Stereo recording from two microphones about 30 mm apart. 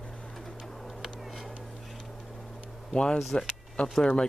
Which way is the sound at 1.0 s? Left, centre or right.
Centre.